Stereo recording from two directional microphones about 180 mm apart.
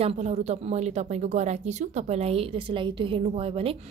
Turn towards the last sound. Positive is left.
turn(degrees=-30)  # may be behind; listen again after turning